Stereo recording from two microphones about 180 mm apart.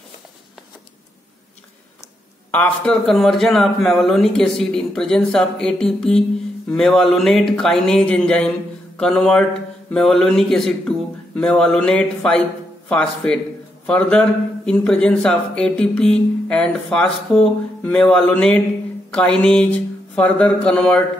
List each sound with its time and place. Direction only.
2.5 s speech: 5° left (ahead or behind)